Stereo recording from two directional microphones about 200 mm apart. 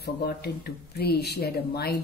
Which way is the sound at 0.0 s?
50° left (ahead or behind).